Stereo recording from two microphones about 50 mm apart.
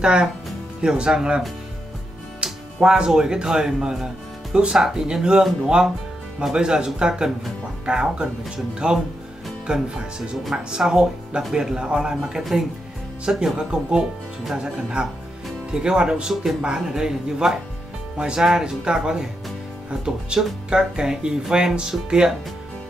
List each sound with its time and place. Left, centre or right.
0.0 s speech: centre
2.4 s speech: centre
6.5 s speech: centre